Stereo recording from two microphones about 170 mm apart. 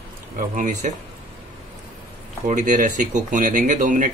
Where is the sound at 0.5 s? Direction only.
50° right (ahead or behind).